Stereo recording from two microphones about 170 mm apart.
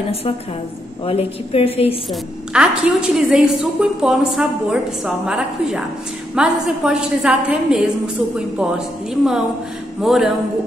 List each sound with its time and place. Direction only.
1.0 s a woman's voice: 35° left (ahead or behind)
2.0 s a woman's voice: 5° right (ahead or behind)